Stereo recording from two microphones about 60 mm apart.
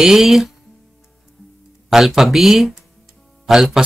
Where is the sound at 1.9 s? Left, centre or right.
Centre.